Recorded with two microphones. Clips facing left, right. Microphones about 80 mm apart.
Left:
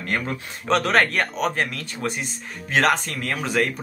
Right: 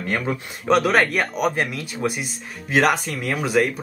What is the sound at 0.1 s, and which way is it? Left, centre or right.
Speech, centre.